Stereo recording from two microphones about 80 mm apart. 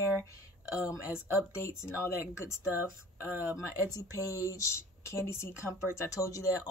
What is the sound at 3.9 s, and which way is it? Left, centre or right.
Speech, left.